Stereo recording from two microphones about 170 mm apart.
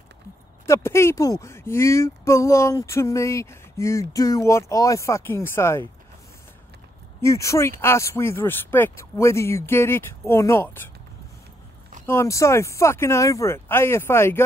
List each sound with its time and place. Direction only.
0.7 s speech: 15° left (ahead or behind)
7.2 s speech: 15° left (ahead or behind)
12.1 s speech: 15° left (ahead or behind)